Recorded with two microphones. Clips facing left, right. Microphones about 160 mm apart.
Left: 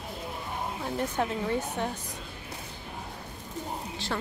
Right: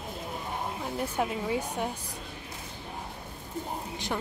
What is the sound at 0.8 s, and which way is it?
Speech, 5° right (ahead or behind).